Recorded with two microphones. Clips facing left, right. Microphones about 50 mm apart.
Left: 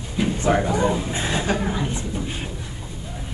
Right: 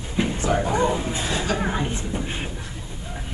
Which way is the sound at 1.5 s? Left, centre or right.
Right.